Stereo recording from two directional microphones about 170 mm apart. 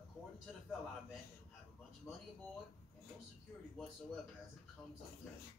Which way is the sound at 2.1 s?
15° left (ahead or behind).